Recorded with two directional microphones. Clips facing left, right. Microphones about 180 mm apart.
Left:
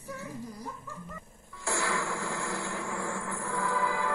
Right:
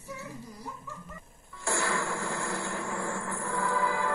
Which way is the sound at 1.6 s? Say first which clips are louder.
Right 1 dB; 50° right (ahead or behind).